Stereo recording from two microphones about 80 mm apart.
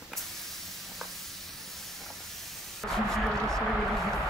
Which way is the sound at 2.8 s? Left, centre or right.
Centre.